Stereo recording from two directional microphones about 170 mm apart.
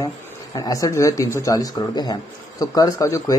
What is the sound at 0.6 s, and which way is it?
A man's voice, 20° left (ahead or behind).